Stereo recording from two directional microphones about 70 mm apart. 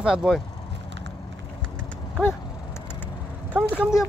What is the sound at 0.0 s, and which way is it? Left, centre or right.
Speech, centre.